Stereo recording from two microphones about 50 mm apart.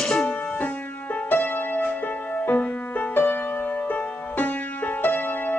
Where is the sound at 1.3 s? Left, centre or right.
Left.